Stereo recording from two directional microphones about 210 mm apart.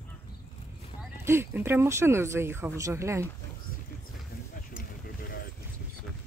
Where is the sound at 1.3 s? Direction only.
10° right (ahead or behind).